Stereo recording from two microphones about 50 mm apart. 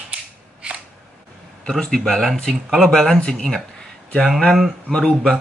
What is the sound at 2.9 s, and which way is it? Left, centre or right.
Speech, centre.